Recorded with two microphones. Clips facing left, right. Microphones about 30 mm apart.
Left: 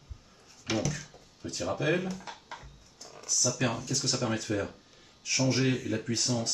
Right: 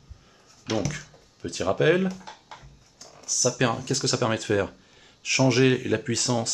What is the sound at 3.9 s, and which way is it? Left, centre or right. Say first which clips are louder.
Speech: right 6 dB; right.